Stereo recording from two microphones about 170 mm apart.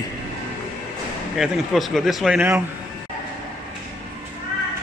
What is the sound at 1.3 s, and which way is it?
A man's voice, centre (ahead or behind).